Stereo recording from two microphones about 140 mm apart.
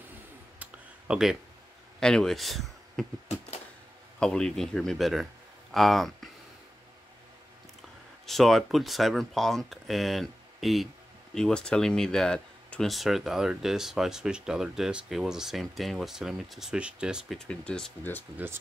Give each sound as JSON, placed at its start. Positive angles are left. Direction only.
{"t": 0.6, "sound": "a sound", "side_deg": -5}
{"t": 2.0, "sound": "a man's voice", "side_deg": 5}
{"t": 4.2, "sound": "speech", "side_deg": 5}
{"t": 8.3, "sound": "speech", "side_deg": 0}